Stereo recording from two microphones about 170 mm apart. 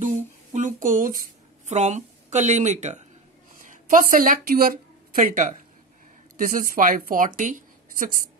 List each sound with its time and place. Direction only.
0.0 s a sound: 50° right (ahead or behind)
1.7 s speech: 40° right (ahead or behind)
3.6 s a woman's voice: 55° right (ahead or behind)